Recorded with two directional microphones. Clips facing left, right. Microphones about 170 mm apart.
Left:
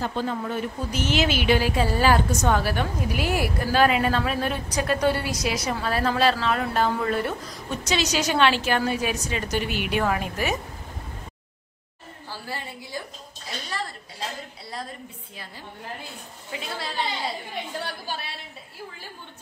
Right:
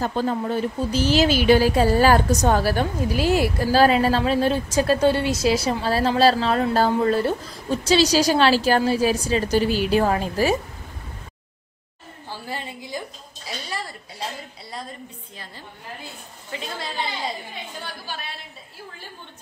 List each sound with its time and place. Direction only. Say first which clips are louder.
0.0 s speech: right 4 dB; 40° right (ahead or behind)
12.4 s a woman's voice: right 3 dB; 20° right (ahead or behind)
16.5 s a woman's voice: right 1 dB; 5° left (ahead or behind)